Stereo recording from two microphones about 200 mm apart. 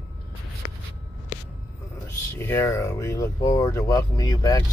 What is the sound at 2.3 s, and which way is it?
Speech, 10° left (ahead or behind).